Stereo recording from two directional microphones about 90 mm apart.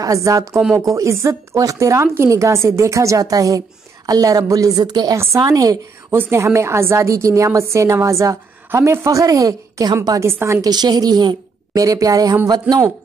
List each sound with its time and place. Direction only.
0.0 s a woman's voice: 40° right (ahead or behind)
5.1 s a woman's voice: 30° right (ahead or behind)
6.0 s a woman's voice: 25° right (ahead or behind)
10.7 s a woman's voice: 50° right (ahead or behind)